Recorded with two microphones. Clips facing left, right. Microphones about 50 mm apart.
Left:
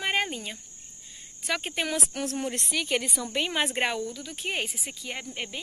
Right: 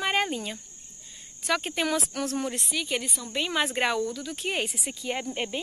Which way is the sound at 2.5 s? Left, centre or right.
Left.